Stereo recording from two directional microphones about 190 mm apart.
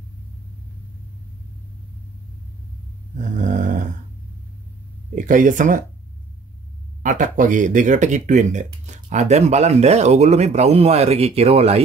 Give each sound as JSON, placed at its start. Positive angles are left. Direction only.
{"t": 3.2, "sound": "snoring", "side_deg": -40}
{"t": 5.1, "sound": "speech", "side_deg": -40}
{"t": 7.0, "sound": "speech", "side_deg": -45}